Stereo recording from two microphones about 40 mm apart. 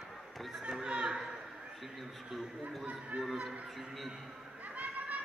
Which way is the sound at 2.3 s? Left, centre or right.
Centre.